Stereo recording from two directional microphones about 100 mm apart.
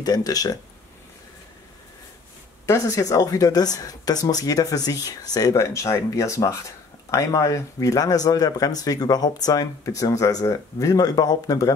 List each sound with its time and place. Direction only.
0.0 s speech: 40° left (ahead or behind)
2.6 s speech: 30° left (ahead or behind)